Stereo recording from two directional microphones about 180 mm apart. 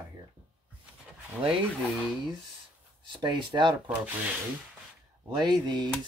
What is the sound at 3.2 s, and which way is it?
Speech, 25° right (ahead or behind).